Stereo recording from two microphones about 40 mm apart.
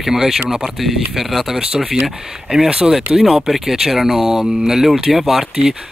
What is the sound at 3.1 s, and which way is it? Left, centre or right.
Speech, centre.